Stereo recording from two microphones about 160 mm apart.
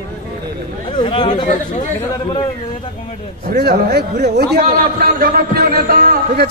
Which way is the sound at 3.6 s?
80° right.